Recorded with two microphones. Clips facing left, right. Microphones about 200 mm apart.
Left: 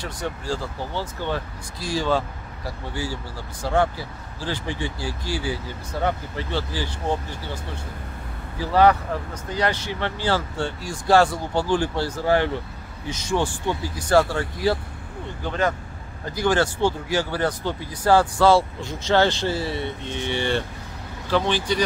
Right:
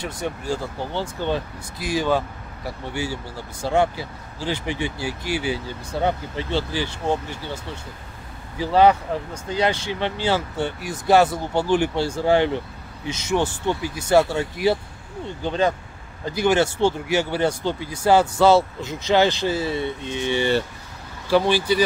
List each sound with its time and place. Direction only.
0.5 s speech: 20° right (ahead or behind)
8.5 s speech: 20° right (ahead or behind)